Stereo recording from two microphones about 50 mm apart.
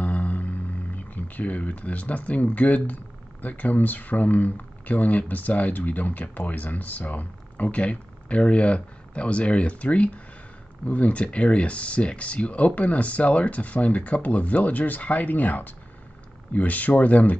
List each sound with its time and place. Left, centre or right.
0.0 s speech: left